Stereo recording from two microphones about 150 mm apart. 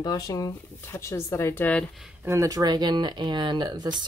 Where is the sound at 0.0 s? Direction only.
25° left (ahead or behind).